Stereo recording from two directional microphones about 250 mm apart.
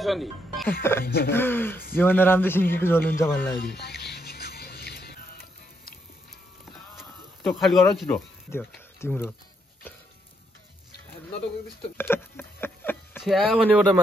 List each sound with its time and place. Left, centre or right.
0.0 s speech: centre
1.0 s a sound: left
1.3 s a man's voice: centre
3.5 s music: left
7.0 s speech: centre
12.0 s a sound: centre
13.2 s speech: centre